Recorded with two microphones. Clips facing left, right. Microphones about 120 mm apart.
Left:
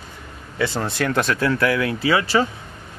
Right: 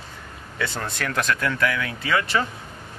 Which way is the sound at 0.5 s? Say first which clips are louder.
Left 6 dB; 25° left (ahead or behind).